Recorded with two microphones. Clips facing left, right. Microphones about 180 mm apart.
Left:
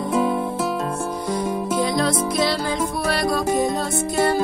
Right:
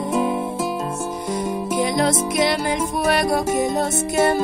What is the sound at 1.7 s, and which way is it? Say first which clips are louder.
Music: right 2 dB; 20° right (ahead or behind).